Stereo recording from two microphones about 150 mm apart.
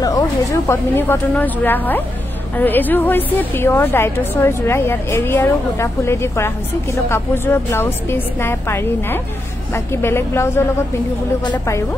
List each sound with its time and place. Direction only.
0.0 s a woman's voice: 20° left (ahead or behind)